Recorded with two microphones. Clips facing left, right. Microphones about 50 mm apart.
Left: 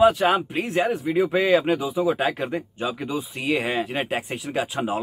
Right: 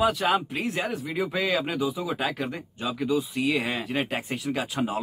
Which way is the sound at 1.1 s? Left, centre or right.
Centre.